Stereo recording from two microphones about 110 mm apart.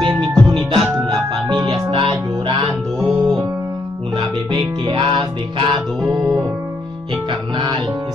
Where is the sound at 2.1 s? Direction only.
35° right (ahead or behind).